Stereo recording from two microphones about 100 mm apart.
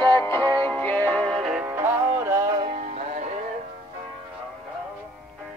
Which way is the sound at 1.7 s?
20° right (ahead or behind).